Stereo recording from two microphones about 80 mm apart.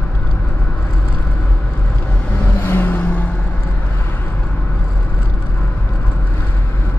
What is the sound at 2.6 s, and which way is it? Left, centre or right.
Vehicle, left.